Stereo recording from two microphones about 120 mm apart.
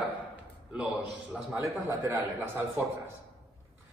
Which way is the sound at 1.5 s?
15° right (ahead or behind).